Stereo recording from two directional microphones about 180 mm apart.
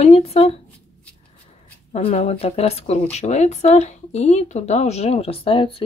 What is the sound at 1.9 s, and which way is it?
Speech, 35° left (ahead or behind).